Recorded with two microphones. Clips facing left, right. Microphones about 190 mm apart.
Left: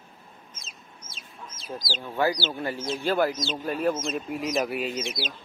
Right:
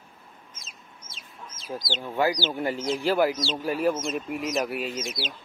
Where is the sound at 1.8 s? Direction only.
20° right (ahead or behind); by 5.3 s centre (ahead or behind).